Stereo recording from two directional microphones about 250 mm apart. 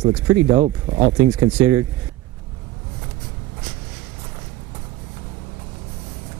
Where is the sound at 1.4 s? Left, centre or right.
Centre.